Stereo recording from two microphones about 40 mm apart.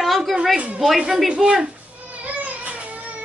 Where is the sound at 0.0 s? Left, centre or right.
Centre.